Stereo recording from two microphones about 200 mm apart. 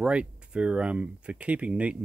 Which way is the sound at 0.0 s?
5° right (ahead or behind).